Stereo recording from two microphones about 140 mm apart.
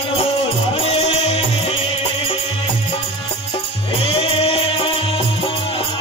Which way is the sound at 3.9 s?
40° left (ahead or behind).